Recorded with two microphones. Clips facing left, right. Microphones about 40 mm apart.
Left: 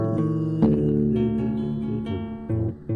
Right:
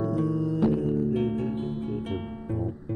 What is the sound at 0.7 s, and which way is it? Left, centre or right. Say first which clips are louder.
Music: left 6 dB; left.